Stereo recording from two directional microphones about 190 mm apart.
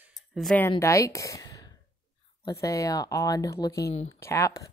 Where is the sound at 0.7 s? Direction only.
15° left (ahead or behind).